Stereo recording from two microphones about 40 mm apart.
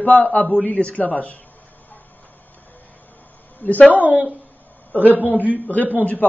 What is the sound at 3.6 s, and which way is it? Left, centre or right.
Speech, left.